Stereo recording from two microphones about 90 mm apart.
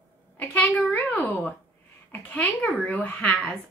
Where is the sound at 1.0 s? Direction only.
20° left (ahead or behind).